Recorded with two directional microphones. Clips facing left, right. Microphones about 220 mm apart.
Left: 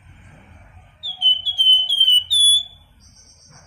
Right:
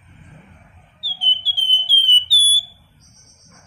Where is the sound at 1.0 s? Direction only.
Centre (ahead or behind).